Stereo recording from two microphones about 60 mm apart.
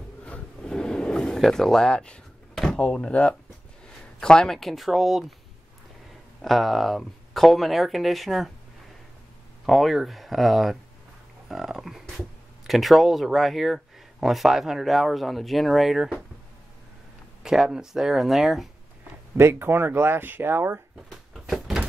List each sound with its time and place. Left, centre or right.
0.2 s a sound: centre
2.8 s speech: centre
6.4 s speech: centre
9.7 s speech: centre
17.4 s speech: centre
19.3 s speech: right
21.1 s a sound: centre